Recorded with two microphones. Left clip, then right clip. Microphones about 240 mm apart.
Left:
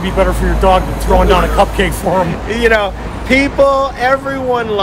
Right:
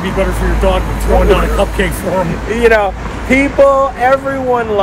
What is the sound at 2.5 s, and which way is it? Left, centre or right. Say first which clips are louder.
Speech: right 4 dB; centre.